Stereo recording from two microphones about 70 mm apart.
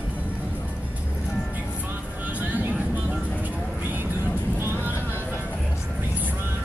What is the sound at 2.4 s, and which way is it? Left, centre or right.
Music, right.